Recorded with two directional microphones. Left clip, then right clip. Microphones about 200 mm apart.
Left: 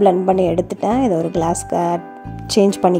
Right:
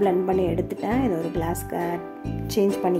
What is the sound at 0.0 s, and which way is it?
A woman's voice, 30° left (ahead or behind).